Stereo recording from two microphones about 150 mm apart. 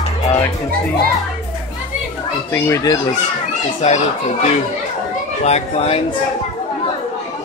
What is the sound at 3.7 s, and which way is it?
A child's voice, 45° left (ahead or behind).